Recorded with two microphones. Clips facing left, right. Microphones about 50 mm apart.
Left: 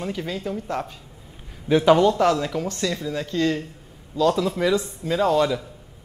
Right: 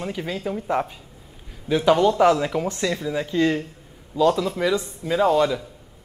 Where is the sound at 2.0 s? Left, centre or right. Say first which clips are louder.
Right 2 dB; centre.